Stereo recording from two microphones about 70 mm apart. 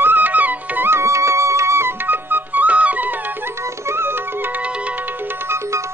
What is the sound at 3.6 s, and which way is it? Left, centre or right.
Music, right.